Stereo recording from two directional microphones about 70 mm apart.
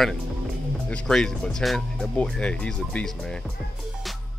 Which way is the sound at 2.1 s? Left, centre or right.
Centre.